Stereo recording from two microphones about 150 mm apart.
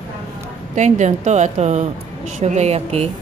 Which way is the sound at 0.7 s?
50° right (ahead or behind).